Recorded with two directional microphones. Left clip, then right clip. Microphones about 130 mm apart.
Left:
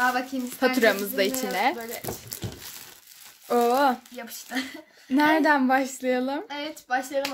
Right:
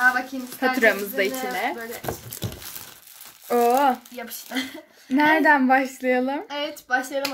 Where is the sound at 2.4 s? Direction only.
45° right (ahead or behind).